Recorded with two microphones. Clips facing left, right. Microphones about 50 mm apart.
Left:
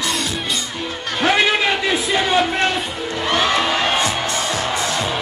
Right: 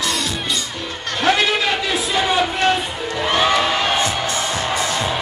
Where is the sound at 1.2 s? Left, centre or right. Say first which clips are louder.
Left 1 dB; centre.